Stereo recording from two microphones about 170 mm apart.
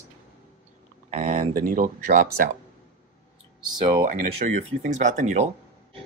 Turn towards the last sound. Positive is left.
turn(degrees=-45)  # may be behind; listen again after turning